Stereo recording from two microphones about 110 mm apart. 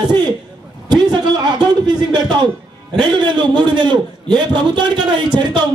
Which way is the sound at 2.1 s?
40° right (ahead or behind).